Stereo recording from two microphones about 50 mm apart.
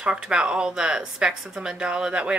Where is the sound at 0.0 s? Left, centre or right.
Centre.